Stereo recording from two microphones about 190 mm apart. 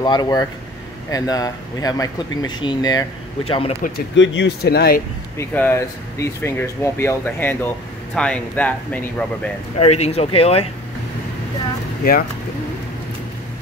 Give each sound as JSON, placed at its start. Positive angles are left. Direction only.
{"t": 0.0, "sound": "speech", "side_deg": 20}
{"t": 4.1, "sound": "speech", "side_deg": 70}
{"t": 5.4, "sound": "speech", "side_deg": 10}
{"t": 9.8, "sound": "speech", "side_deg": 35}
{"t": 12.0, "sound": "speech", "side_deg": 50}